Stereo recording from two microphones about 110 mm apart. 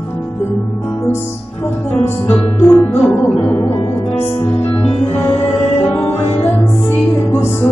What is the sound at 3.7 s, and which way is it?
Music, 65° left (ahead or behind).